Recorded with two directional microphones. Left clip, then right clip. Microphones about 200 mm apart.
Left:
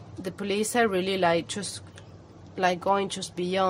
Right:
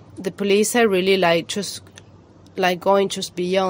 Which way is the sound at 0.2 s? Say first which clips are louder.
Right 10 dB; 35° right (ahead or behind).